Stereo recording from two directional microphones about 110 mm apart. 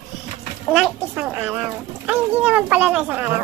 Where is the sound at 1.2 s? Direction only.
15° right (ahead or behind).